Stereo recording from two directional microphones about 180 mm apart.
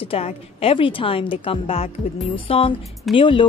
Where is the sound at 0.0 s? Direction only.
35° left (ahead or behind).